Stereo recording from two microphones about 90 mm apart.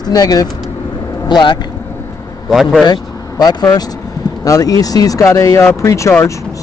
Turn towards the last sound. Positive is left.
turn(degrees=30)  # may be behind; listen again after turning